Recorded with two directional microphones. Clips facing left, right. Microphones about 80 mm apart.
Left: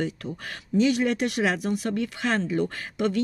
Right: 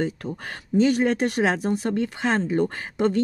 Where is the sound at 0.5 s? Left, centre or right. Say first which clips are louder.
Right 2 dB; right.